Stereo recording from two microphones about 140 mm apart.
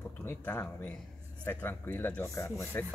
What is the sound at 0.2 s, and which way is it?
Speech, 15° left (ahead or behind).